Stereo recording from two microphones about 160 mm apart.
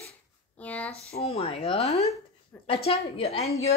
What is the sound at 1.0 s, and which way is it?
A woman's voice, 40° left (ahead or behind).